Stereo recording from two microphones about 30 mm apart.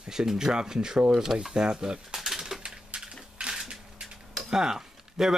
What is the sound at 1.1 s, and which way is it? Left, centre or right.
Speech, centre.